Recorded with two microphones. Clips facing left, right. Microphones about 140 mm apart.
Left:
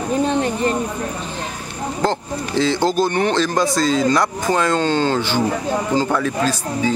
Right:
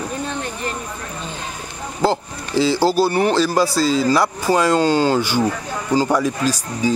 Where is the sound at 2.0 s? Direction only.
5° right (ahead or behind).